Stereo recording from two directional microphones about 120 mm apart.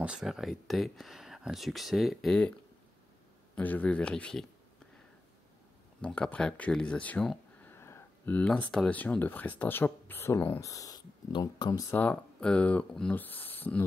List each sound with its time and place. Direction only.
0.0 s speech: 5° right (ahead or behind)
3.5 s speech: 10° left (ahead or behind)
5.9 s speech: 10° left (ahead or behind)
7.7 s a sound: 20° left (ahead or behind)
8.4 s speech: 10° left (ahead or behind)
10.6 s speech: 30° left (ahead or behind)
11.9 s speech: 10° left (ahead or behind)